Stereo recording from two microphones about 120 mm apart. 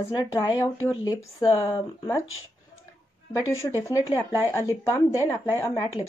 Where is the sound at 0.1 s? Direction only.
35° left (ahead or behind).